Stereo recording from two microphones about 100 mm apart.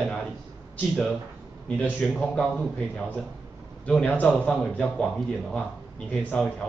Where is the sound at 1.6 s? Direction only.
15° left (ahead or behind).